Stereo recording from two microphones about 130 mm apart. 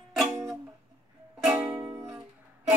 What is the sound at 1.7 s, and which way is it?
Music, 25° right (ahead or behind).